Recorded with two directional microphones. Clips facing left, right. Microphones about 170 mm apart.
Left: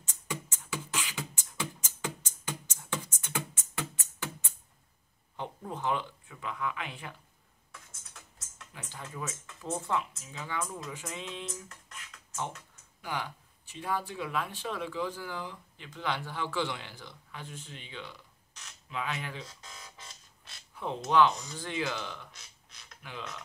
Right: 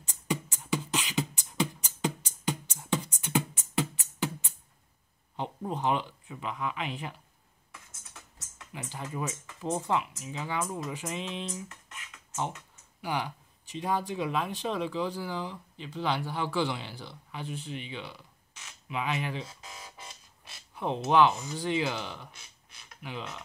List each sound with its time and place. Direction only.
0.1 s beatboxing: 15° right (ahead or behind)
2.0 s music: 15° right (ahead or behind)
5.4 s speech: 20° right (ahead or behind)
8.7 s speech: 15° right (ahead or behind)
11.7 s a sound: centre (ahead or behind)
13.0 s speech: 15° right (ahead or behind)
21.0 s speech: 10° right (ahead or behind)